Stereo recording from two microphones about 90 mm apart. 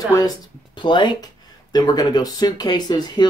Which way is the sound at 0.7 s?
60° left (ahead or behind).